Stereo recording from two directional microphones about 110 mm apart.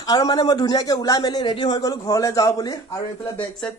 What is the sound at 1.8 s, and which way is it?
Speech, 30° left (ahead or behind).